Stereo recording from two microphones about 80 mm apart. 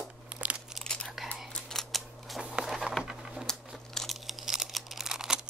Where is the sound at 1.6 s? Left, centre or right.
Centre.